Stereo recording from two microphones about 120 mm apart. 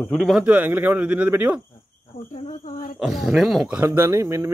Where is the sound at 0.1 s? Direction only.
Centre (ahead or behind).